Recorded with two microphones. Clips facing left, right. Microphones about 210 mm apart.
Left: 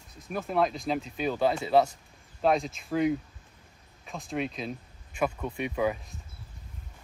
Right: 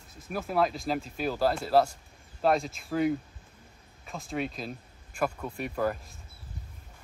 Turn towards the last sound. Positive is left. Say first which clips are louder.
# left 1 dB
turn(degrees=0)  # may be behind; listen again after turning